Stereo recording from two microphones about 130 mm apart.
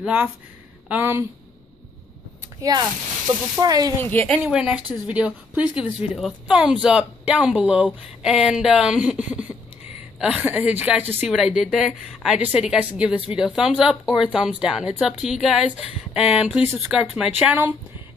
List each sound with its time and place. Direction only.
0.0 s speech: 15° right (ahead or behind)
2.6 s speech: 30° right (ahead or behind)
4.0 s speech: 15° left (ahead or behind)
4.4 s speech: 10° right (ahead or behind)
9.3 s a sound: 10° right (ahead or behind)
10.1 s speech: 5° right (ahead or behind)
11.2 s a woman's voice: 5° right (ahead or behind)